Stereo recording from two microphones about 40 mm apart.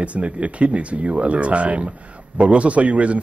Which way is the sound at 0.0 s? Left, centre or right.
Right.